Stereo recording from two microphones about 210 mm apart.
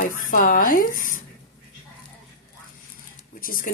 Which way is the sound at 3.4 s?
40° left (ahead or behind).